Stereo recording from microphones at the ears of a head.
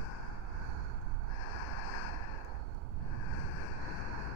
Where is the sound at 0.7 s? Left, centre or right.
Right.